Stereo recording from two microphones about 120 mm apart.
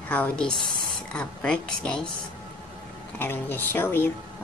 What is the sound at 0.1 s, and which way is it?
Speech, 10° left (ahead or behind).